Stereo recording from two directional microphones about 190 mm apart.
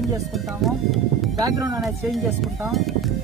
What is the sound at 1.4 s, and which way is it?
Speech, 20° right (ahead or behind).